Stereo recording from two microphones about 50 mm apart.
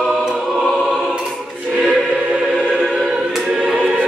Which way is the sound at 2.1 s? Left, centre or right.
Centre.